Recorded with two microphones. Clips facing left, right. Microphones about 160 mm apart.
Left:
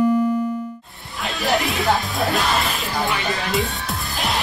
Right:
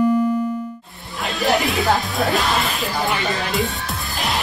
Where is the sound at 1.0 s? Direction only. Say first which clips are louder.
Right 3 dB; centre (ahead or behind).